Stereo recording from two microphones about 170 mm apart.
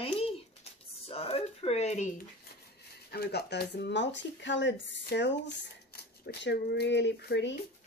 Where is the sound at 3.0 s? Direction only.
70° left (ahead or behind); by 5.6 s 90° left.